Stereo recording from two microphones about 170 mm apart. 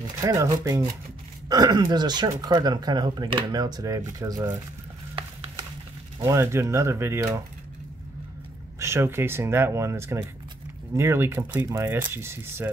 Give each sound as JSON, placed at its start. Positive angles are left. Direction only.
{"t": 0.2, "sound": "speech", "side_deg": -20}
{"t": 6.1, "sound": "speech", "side_deg": -20}
{"t": 8.7, "sound": "speech", "side_deg": -15}